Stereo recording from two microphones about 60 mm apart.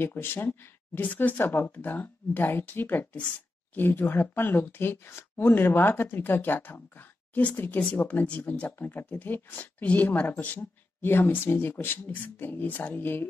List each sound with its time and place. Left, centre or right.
0.0 s speech: left
0.5 s speech: left